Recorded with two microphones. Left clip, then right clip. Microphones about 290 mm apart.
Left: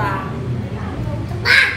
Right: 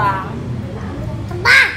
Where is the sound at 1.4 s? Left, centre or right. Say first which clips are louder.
Right 3 dB; right.